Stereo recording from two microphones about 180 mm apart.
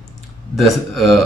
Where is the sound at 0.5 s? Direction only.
Centre (ahead or behind).